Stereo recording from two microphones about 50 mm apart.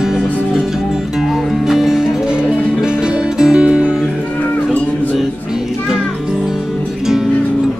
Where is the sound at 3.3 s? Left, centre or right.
Centre.